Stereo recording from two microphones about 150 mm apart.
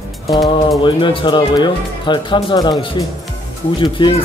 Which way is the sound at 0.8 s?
35° left (ahead or behind).